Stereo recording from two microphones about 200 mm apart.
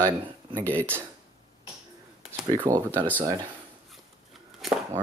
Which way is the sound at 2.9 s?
10° left (ahead or behind).